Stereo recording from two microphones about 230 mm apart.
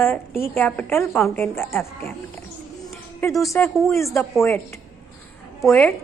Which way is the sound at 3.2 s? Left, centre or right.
Centre.